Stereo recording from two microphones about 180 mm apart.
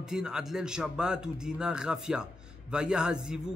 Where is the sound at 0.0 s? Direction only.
5° right (ahead or behind).